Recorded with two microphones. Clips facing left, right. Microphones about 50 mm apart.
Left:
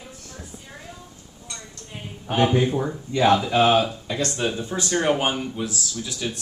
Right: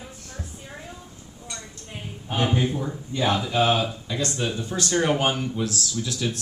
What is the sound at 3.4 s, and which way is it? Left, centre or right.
Speech, left.